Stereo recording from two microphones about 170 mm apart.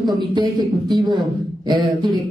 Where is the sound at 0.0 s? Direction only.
25° right (ahead or behind).